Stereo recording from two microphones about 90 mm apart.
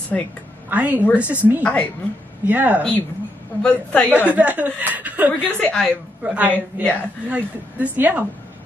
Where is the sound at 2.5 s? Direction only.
20° right (ahead or behind).